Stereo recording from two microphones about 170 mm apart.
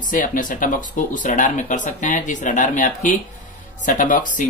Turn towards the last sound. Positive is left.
turn(degrees=50)  # may be behind; listen again after turning